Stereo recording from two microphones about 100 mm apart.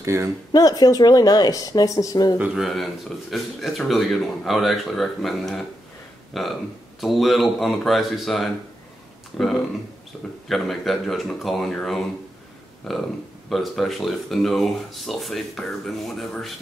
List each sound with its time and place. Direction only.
0.0 s speech: 25° right (ahead or behind)
0.5 s speech: 40° left (ahead or behind)
2.3 s speech: 15° right (ahead or behind)
2.6 s speech: centre (ahead or behind)
10.5 s speech: centre (ahead or behind)